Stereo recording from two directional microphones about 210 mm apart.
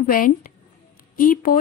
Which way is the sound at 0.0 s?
40° left (ahead or behind).